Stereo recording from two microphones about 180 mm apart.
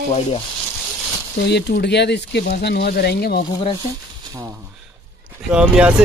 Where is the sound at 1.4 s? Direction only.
70° left (ahead or behind).